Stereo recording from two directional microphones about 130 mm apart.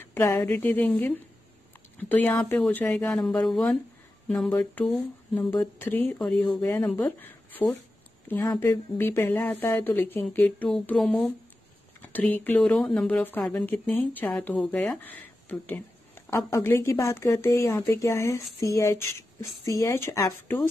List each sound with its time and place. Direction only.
0.0 s speech: 15° left (ahead or behind)
6.1 s speech: 5° left (ahead or behind)
6.5 s speech: 15° left (ahead or behind)
10.7 s speech: centre (ahead or behind)
12.0 s a woman's voice: 15° left (ahead or behind)